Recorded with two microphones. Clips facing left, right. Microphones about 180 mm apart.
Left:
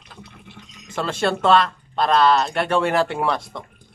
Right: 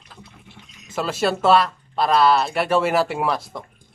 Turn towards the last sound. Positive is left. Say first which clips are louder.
# even
turn(degrees=-5)  # may be behind; listen again after turning